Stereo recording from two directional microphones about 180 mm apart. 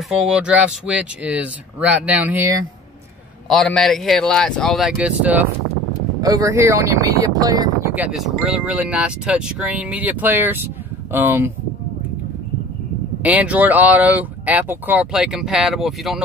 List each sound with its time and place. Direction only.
0.1 s speech: 5° right (ahead or behind)
3.4 s speech: centre (ahead or behind); by 7.9 s 20° right (ahead or behind)
7.9 s speech: 5° right (ahead or behind)
13.2 s speech: 10° right (ahead or behind)